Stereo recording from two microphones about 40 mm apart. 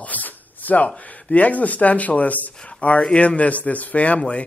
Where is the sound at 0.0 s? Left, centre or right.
Left.